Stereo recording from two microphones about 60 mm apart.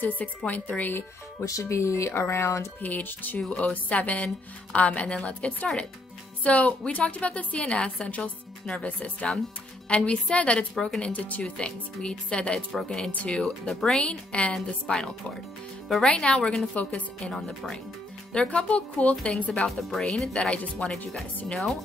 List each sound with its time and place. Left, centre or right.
0.5 s a woman's voice: left
1.4 s speech: left
2.8 s speech: left
3.3 s a woman's voice: centre
10.7 s speech: centre
11.0 s speech: left
13.1 s a woman's voice: left
13.4 s speech: centre
14.0 s a woman's voice: centre
17.2 s a woman's voice: centre
19.8 s speech: centre
20.4 s a woman's voice: left
20.7 s speech: centre